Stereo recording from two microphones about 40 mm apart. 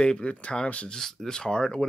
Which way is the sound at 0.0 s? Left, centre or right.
Left.